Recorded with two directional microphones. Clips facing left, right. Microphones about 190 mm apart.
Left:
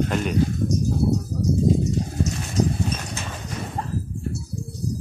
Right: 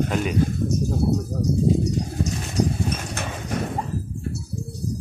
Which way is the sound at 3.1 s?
60° right (ahead or behind).